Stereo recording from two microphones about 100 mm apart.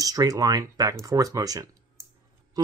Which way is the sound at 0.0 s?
35° right (ahead or behind).